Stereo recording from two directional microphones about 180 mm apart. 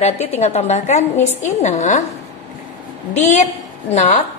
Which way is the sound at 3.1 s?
40° left (ahead or behind).